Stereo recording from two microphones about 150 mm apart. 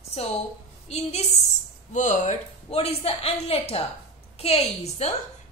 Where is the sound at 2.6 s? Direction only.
40° left (ahead or behind).